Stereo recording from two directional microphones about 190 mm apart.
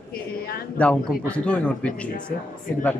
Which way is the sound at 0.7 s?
5° left (ahead or behind).